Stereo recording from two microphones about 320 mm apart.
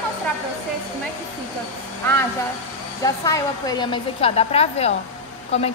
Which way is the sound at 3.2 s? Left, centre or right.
Centre.